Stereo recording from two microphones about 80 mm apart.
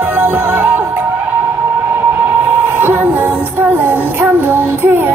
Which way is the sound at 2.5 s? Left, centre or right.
Right.